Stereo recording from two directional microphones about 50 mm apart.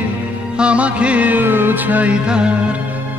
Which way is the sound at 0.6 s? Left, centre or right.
Right.